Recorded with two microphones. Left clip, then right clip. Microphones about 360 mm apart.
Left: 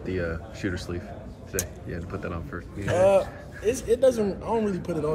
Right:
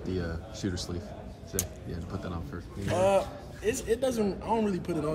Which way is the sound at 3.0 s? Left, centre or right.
Centre.